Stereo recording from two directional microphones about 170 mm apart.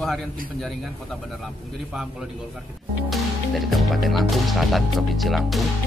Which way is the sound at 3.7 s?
Centre (ahead or behind).